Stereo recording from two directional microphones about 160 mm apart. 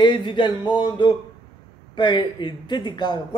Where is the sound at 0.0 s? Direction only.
30° left (ahead or behind).